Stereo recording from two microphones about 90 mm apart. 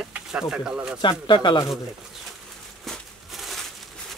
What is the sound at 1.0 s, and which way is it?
Speech, 65° left (ahead or behind).